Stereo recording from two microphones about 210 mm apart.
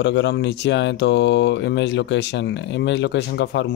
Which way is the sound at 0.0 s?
55° left (ahead or behind).